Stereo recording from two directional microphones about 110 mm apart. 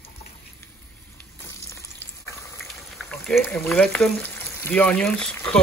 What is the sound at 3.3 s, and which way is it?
Speech, 10° left (ahead or behind).